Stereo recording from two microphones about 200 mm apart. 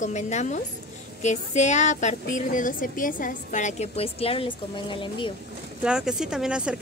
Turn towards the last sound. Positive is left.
turn(degrees=-5)  # may be behind; listen again after turning